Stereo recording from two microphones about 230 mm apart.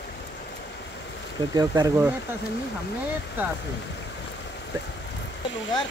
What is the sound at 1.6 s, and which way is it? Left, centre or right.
Speech, centre.